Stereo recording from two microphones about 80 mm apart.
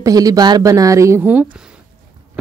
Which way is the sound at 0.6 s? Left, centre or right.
Right.